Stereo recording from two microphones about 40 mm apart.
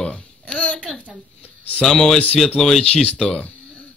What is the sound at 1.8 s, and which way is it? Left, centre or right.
Speech, centre.